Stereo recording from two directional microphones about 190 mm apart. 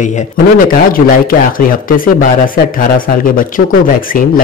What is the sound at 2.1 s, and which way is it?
Speech, 45° left (ahead or behind).